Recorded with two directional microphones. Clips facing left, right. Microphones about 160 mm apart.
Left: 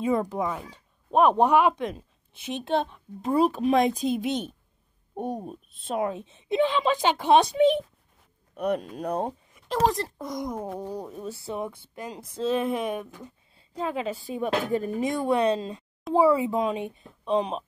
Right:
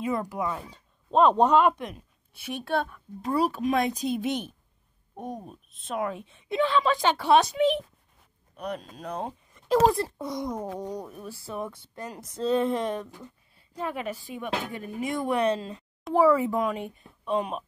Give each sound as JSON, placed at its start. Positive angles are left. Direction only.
{"t": 0.0, "sound": "speech", "side_deg": 30}
{"t": 1.1, "sound": "speech", "side_deg": 15}
{"t": 1.9, "sound": "speech", "side_deg": 25}
{"t": 5.1, "sound": "speech", "side_deg": 30}
{"t": 7.3, "sound": "speech", "side_deg": 30}
{"t": 8.5, "sound": "speech", "side_deg": 55}
{"t": 9.7, "sound": "speech", "side_deg": -5}
{"t": 10.4, "sound": "speech", "side_deg": 10}
{"t": 11.1, "sound": "speech", "side_deg": 20}
{"t": 13.6, "sound": "speech", "side_deg": 20}
{"t": 15.0, "sound": "speech", "side_deg": 15}